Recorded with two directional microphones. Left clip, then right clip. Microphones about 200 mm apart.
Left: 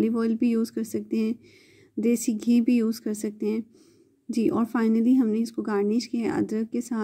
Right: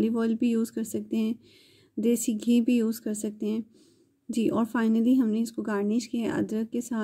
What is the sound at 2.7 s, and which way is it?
Speech, 15° left (ahead or behind).